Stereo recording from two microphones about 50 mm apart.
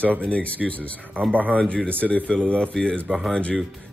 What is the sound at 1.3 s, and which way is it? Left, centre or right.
Speech, right.